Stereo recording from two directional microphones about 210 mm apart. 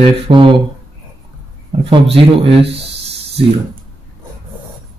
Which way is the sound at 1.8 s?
25° right (ahead or behind).